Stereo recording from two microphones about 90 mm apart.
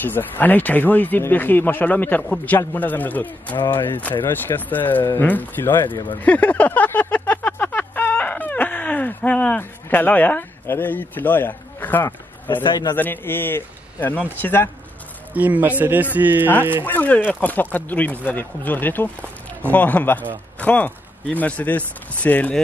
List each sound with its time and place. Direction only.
0.0 s speech: 20° left (ahead or behind)
3.5 s a man's voice: 60° left (ahead or behind)
3.8 s speech: 20° left (ahead or behind)
6.2 s a sound: 15° left (ahead or behind)
12.6 s a man's voice: 55° left (ahead or behind)
12.9 s speech: 20° left (ahead or behind)
15.3 s speech: 20° right (ahead or behind)
16.8 s speech: 20° left (ahead or behind)